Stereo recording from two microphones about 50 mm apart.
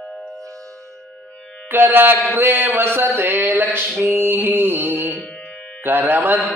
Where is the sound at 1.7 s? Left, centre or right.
Right.